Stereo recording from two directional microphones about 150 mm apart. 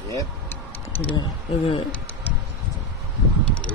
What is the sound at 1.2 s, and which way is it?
Speech, 40° left (ahead or behind).